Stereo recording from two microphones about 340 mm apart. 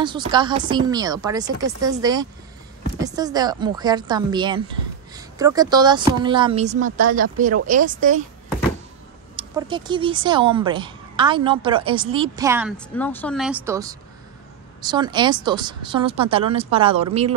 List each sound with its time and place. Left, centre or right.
0.0 s speech: centre
9.4 s speech: centre